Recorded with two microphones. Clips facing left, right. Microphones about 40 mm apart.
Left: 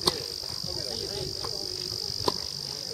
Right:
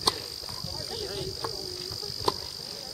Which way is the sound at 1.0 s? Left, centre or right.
Right.